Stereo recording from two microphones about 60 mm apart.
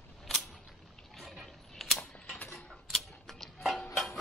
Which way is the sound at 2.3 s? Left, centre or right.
Left.